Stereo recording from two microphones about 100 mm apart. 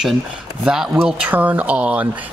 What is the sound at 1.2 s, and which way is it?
Speech, 20° right (ahead or behind).